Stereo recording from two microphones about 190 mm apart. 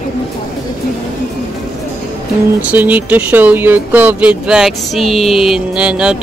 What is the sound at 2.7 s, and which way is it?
Speech, 10° right (ahead or behind).